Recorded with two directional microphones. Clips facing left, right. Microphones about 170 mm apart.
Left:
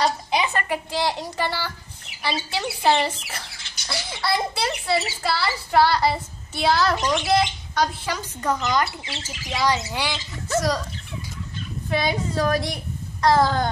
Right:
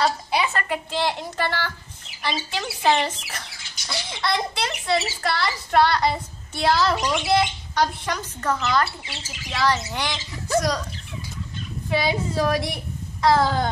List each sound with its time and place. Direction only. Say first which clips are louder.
0.5 s speech: left 1 dB; 10° left (ahead or behind)
11.9 s a child's voice: right 1 dB; 5° right (ahead or behind)